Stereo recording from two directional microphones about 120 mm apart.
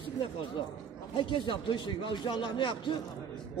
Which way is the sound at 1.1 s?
40° left (ahead or behind).